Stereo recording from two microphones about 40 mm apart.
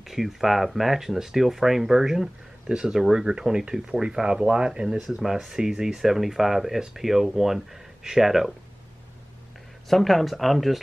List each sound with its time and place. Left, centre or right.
0.0 s speech: centre
9.8 s speech: centre